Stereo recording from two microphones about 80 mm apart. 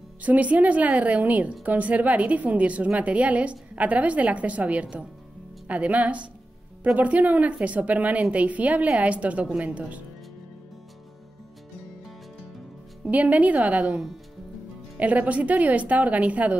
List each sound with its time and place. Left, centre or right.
0.2 s a woman's voice: centre
13.0 s a woman's voice: centre